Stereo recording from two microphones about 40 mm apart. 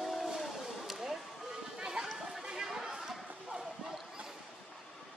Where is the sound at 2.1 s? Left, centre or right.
Centre.